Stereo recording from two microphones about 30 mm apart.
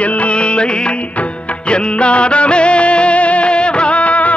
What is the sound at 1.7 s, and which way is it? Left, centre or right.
Music, left.